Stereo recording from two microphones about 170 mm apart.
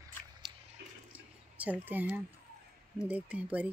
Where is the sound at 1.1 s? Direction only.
10° right (ahead or behind).